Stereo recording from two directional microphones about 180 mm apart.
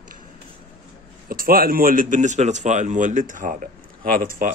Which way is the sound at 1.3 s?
55° right (ahead or behind).